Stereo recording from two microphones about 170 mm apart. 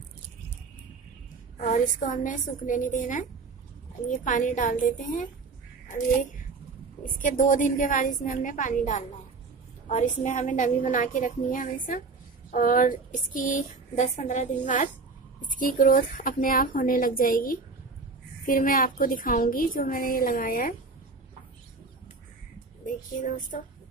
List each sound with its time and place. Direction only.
1.6 s speech: 45° left (ahead or behind)
7.2 s a woman's voice: 50° left (ahead or behind)
22.8 s speech: 50° left (ahead or behind)